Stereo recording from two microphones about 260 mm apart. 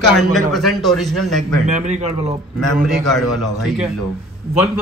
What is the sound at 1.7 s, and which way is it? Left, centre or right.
Speech, right.